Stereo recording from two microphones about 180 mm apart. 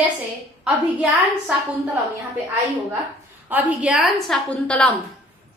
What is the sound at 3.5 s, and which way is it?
A woman's voice, 10° right (ahead or behind).